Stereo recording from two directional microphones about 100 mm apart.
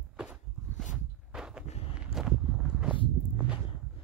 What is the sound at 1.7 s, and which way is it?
Walk, 90° left.